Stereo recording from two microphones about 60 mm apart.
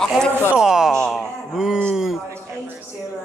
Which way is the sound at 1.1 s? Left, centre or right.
Centre.